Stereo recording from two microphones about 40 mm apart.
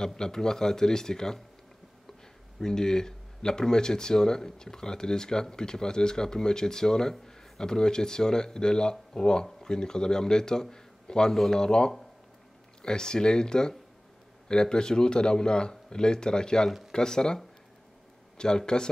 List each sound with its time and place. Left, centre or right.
0.0 s speech: centre
2.6 s speech: centre
11.3 s speech: centre
11.6 s speech: centre
18.4 s speech: centre